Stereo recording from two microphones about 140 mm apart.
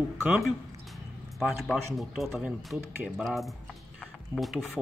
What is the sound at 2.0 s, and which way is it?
Speech, 5° right (ahead or behind).